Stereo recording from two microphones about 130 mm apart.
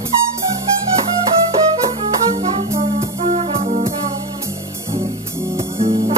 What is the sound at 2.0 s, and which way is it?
Music, 50° right (ahead or behind).